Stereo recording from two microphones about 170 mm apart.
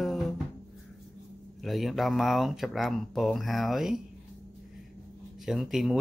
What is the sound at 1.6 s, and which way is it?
Speech, centre (ahead or behind).